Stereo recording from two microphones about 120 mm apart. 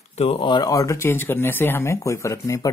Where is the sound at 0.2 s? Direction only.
55° left (ahead or behind).